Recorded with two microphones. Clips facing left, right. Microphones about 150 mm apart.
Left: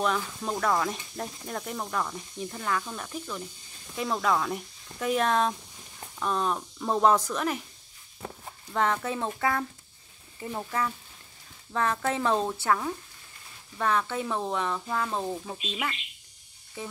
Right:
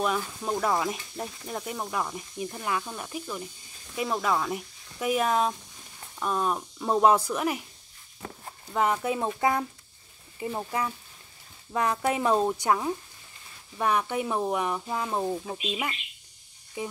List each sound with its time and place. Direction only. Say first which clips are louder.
0.0 s speech: even; 5° right (ahead or behind)
8.7 s speech: right 2 dB; 10° right (ahead or behind)